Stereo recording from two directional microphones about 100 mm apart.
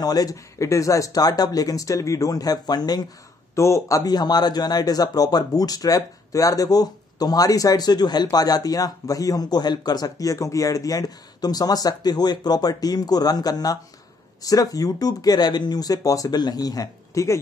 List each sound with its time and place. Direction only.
0.0 s a man's voice: 40° left (ahead or behind)
3.5 s a man's voice: 30° left (ahead or behind)